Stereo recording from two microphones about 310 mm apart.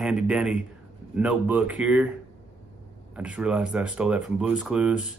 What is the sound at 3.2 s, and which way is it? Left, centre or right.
Speech, centre.